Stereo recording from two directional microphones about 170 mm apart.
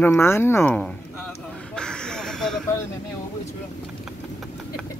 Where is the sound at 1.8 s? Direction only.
5° left (ahead or behind).